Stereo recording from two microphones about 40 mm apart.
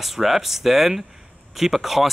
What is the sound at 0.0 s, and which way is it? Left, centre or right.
Speech, centre.